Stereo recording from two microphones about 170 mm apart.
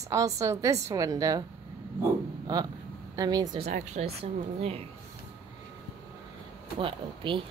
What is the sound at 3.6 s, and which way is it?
Speech, 40° right (ahead or behind).